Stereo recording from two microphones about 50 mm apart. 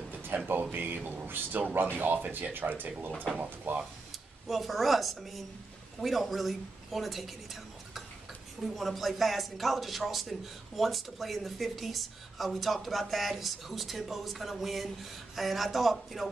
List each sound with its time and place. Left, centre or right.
0.1 s a sound: right
0.5 s speech: right
4.1 s a woman's voice: centre